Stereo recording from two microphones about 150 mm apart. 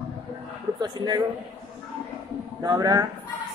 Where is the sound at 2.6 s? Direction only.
25° right (ahead or behind).